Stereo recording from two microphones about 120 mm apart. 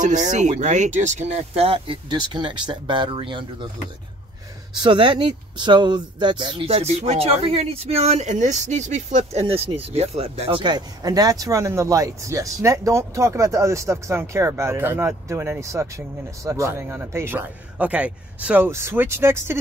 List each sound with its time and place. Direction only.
0.0 s speech: 90° right; by 3.4 s 45° right (ahead or behind)
4.8 s speech: 40° right (ahead or behind)
6.7 s speech: 65° right (ahead or behind)
10.6 s a man's voice: 35° right (ahead or behind)